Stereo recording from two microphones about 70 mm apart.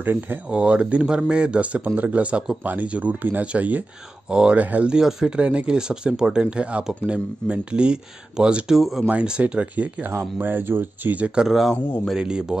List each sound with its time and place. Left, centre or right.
0.0 s speech: right
0.5 s speech: centre
4.9 s speech: centre
9.1 s speech: centre
10.1 s speech: right
11.4 s speech: centre
12.2 s speech: centre